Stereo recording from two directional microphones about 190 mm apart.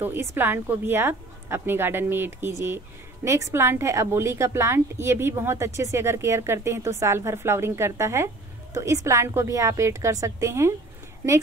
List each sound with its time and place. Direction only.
0.0 s a woman's voice: 10° right (ahead or behind)